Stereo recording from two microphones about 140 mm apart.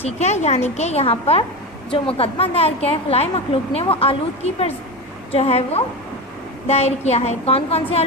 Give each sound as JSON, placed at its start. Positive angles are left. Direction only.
{"t": 0.0, "sound": "a woman's voice", "side_deg": 50}